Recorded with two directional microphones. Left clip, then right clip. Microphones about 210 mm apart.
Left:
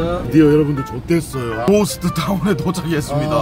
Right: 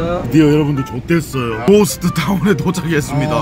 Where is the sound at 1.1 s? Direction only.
15° right (ahead or behind).